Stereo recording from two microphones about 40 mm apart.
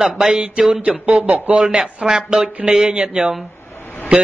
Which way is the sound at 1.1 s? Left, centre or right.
Right.